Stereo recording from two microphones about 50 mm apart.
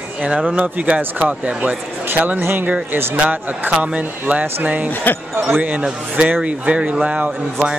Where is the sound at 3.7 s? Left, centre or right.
Right.